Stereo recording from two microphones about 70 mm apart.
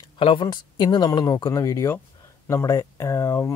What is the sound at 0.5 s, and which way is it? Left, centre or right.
A woman's voice, left.